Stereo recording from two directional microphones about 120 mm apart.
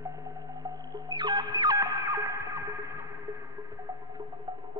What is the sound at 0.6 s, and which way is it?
Music, 35° right (ahead or behind).